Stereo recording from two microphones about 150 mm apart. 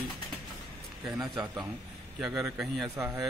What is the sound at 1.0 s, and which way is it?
Speech, 30° right (ahead or behind).